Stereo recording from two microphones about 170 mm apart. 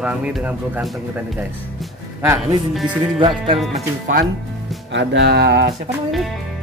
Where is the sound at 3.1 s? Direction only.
30° right (ahead or behind).